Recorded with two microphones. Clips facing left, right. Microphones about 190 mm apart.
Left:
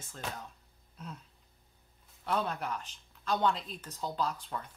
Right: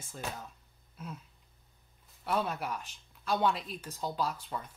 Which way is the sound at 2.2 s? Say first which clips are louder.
Right 1 dB; 5° right (ahead or behind).